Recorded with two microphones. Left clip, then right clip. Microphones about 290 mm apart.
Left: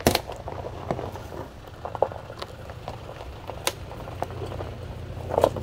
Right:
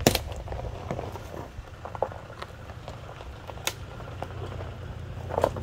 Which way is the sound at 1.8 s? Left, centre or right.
Left.